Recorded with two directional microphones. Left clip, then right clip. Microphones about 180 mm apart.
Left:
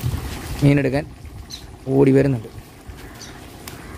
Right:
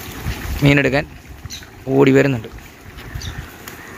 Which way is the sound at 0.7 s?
5° left (ahead or behind).